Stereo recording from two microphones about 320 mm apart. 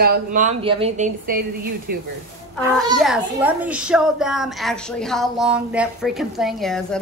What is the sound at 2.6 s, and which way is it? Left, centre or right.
A child's voice, centre.